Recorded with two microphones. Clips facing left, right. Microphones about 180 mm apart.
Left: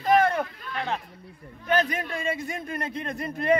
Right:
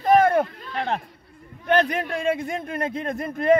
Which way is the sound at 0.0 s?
50° right (ahead or behind).